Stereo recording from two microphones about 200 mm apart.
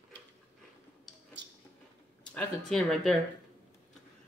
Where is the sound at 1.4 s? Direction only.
60° right (ahead or behind).